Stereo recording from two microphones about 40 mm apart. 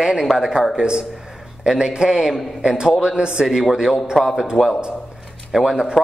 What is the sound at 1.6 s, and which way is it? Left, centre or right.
A man's voice, right.